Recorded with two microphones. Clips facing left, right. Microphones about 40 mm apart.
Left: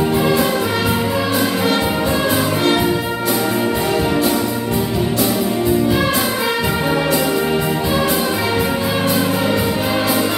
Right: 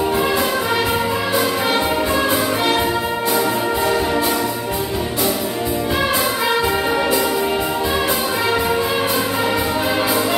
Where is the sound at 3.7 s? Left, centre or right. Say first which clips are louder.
Even; centre.